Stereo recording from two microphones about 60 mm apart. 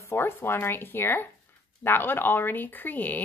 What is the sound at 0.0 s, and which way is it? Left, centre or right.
Speech, left.